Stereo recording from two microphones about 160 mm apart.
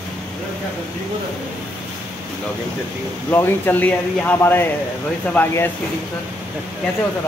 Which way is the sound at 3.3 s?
10° left (ahead or behind).